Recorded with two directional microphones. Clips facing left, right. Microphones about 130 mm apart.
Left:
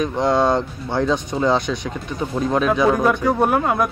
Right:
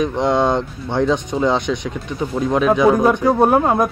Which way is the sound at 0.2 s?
20° right (ahead or behind).